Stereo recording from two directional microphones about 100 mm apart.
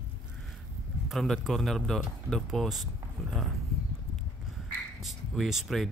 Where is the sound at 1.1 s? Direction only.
5° left (ahead or behind).